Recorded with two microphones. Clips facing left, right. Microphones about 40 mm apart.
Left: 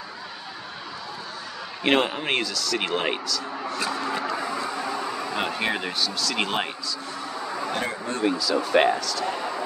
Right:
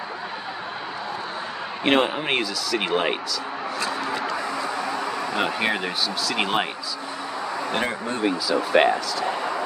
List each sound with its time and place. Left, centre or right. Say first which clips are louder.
1.9 s a man's voice: right 1 dB; centre
3.6 s a sound: right 1 dB; centre
4.7 s speech: right 2 dB; centre
8.2 s a man's voice: even; centre